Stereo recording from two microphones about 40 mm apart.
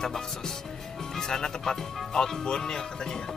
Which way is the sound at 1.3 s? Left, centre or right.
Centre.